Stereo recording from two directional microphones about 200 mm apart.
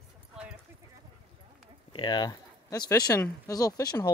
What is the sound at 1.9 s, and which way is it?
Speech, 20° left (ahead or behind).